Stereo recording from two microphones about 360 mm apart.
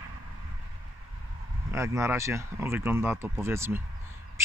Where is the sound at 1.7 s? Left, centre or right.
Centre.